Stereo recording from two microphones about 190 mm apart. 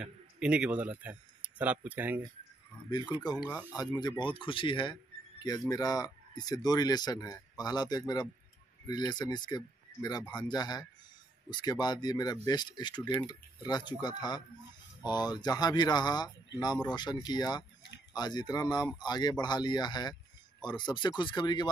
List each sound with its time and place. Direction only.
0.0 s speech: 5° right (ahead or behind)
3.7 s speech: 20° left (ahead or behind)